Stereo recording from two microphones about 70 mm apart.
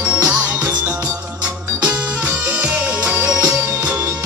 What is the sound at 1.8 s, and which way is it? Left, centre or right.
Music, right.